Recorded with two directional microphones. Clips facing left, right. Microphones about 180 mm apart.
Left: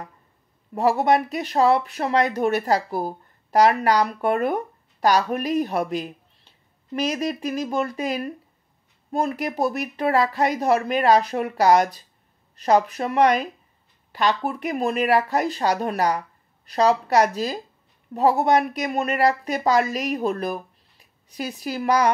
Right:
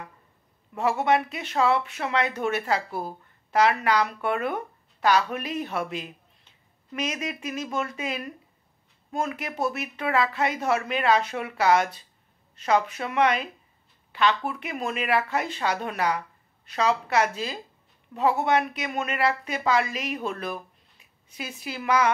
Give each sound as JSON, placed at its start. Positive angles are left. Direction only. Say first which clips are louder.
{"t": 0.7, "sound": "speech", "louder": "left 4 dB", "side_deg": 35}